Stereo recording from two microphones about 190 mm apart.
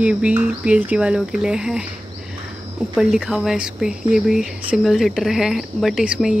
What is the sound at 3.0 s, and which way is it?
Speech, centre (ahead or behind).